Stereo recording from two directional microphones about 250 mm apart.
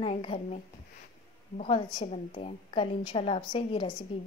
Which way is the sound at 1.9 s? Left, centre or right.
Left.